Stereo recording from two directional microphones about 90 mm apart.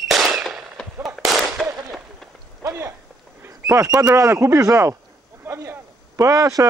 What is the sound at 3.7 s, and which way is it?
Speech, 35° right (ahead or behind).